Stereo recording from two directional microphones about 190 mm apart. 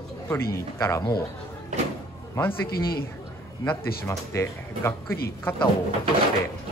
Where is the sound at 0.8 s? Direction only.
15° left (ahead or behind).